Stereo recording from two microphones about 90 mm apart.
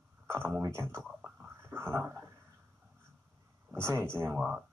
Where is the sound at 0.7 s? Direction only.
25° right (ahead or behind).